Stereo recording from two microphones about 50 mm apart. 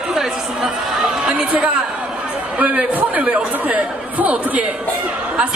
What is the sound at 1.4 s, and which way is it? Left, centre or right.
Speech, right.